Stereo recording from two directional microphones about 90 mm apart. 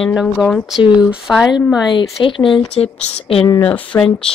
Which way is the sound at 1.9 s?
65° left (ahead or behind).